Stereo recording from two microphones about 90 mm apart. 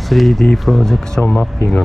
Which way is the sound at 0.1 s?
Centre (ahead or behind).